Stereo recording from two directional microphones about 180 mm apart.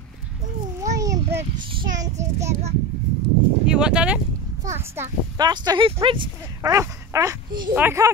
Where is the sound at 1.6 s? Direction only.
25° right (ahead or behind).